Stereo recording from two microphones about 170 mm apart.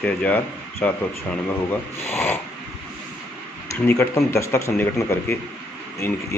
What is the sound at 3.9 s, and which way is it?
Speech, 15° left (ahead or behind).